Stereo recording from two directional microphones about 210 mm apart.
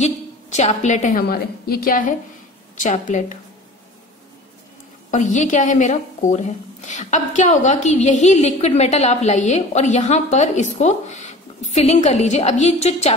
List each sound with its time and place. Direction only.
0.0 s a woman's voice: 35° left (ahead or behind)
5.1 s a woman's voice: 35° left (ahead or behind)